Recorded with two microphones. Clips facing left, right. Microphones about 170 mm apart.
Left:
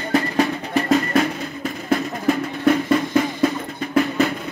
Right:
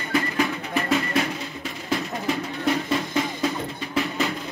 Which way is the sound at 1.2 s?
50° left (ahead or behind).